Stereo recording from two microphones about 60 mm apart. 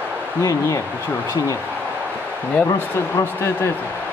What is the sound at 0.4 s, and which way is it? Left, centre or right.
Speech, left.